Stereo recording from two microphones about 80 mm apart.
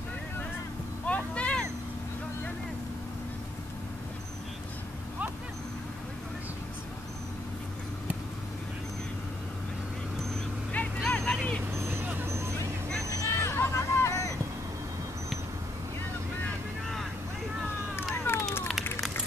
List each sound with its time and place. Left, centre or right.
1.0 s vehicle: centre
11.0 s vehicle: centre
11.6 s vehicle: right
13.1 s hubbub: left
17.9 s a sound: left